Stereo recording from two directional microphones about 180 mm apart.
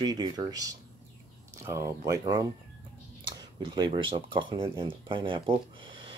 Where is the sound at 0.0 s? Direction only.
20° right (ahead or behind).